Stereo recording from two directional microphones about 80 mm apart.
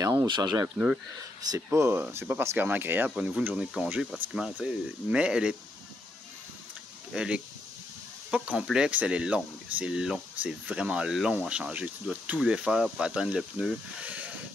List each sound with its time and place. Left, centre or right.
0.0 s speech: right
0.3 s speech: right
1.7 s speech: right
3.2 s speech: centre
7.2 s speech: centre
14.0 s a sound: centre